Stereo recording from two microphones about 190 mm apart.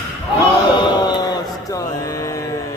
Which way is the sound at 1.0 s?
20° left (ahead or behind).